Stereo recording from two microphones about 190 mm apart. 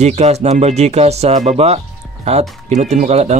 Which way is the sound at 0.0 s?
35° right (ahead or behind).